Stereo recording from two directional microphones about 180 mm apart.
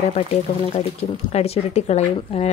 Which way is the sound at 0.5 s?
40° left (ahead or behind).